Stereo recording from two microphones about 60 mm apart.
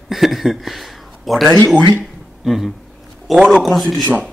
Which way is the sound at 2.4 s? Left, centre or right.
Centre.